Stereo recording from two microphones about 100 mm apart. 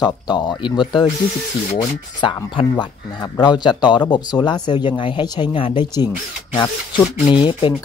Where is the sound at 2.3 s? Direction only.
50° left (ahead or behind).